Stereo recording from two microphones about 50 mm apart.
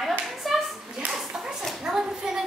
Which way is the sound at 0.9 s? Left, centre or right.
Centre.